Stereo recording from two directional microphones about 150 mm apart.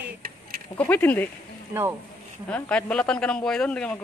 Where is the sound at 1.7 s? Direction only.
15° right (ahead or behind).